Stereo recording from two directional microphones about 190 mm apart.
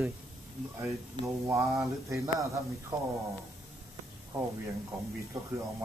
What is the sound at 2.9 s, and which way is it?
Speech, 25° right (ahead or behind).